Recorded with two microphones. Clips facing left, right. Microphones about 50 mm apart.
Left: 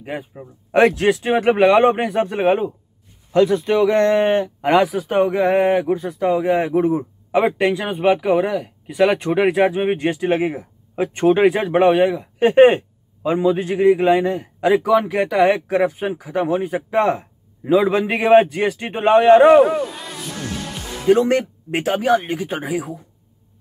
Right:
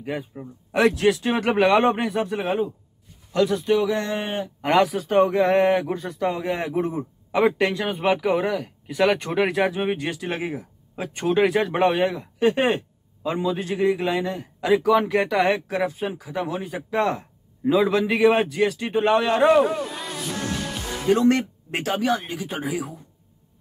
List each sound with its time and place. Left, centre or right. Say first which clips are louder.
0.0 s speech: left 1 dB; centre
0.7 s speech: left 4 dB; left
1.2 s a man's voice: left 5 dB; centre; by 4.5 s left
4.6 s speech: left 3 dB; centre
7.3 s speech: left 3 dB; centre
9.8 s speech: left 7 dB; left; by 12.3 s centre
12.4 s a man's voice: left 9 dB; left
14.9 s speech: left 2 dB; centre
15.7 s a man's voice: left 6 dB; left
17.9 s speech: left 5 dB; left
21.1 s a man's voice: left 4 dB; left
21.8 s speech: left 6 dB; left